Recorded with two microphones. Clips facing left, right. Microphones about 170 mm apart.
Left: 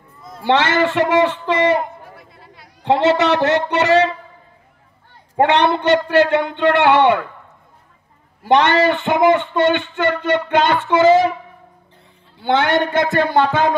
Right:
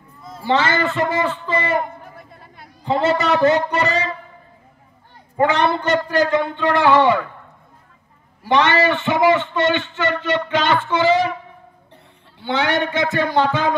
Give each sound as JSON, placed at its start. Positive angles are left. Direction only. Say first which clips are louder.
{"t": 0.4, "sound": "a man's voice", "louder": "left 3 dB", "side_deg": 75}
{"t": 2.1, "sound": "chatter", "louder": "right 1 dB", "side_deg": -50}
{"t": 2.8, "sound": "a man's voice", "louder": "left 4 dB", "side_deg": 75}
{"t": 5.3, "sound": "a man's voice", "louder": "left 2 dB", "side_deg": 75}
{"t": 8.5, "sound": "a man's voice", "louder": "left 3 dB", "side_deg": 55}
{"t": 12.4, "sound": "speech", "louder": "left 4 dB", "side_deg": 50}